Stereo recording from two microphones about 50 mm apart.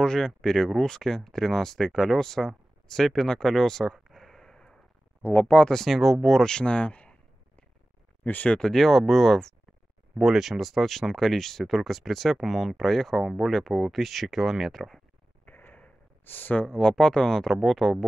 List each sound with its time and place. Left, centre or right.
0.0 s speech: centre
5.2 s speech: left
5.7 s speech: centre; by 7.2 s left
8.2 s speech: left
8.5 s speech: centre
10.1 s speech: centre
13.2 s speech: centre
13.5 s speech: centre
15.4 s a sound: left
16.3 s speech: left
16.6 s speech: centre